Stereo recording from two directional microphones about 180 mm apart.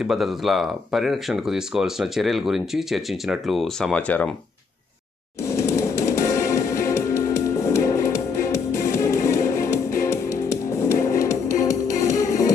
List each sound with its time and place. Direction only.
0.0 s speech: centre (ahead or behind)
5.4 s music: 15° left (ahead or behind)